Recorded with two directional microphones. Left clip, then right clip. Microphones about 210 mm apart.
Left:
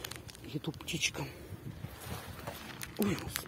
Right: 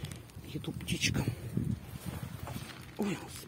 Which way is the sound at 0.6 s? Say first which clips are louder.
Right 1 dB; 5° left (ahead or behind).